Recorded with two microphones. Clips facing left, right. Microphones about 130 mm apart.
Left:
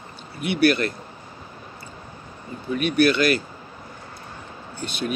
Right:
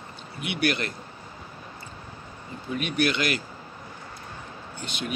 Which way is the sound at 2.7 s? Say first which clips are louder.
Left 7 dB; 20° right (ahead or behind).